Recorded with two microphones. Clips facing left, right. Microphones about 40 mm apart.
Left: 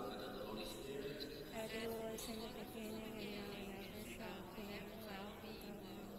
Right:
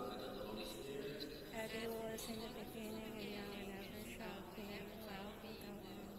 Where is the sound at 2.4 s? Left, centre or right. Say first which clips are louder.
Even; centre.